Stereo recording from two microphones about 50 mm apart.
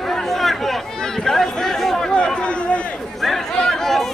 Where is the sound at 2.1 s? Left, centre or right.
Centre.